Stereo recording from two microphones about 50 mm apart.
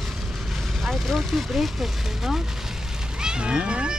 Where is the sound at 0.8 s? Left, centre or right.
Centre.